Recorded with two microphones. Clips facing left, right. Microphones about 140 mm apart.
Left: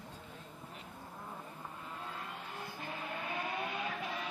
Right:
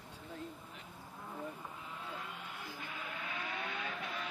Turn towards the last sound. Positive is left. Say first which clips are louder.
# left 4 dB
turn(degrees=40)  # may be behind; listen again after turning